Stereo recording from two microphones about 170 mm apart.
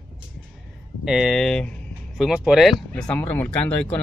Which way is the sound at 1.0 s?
5° right (ahead or behind).